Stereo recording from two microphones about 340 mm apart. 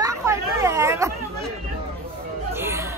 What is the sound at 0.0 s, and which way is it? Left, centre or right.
Hubbub, centre.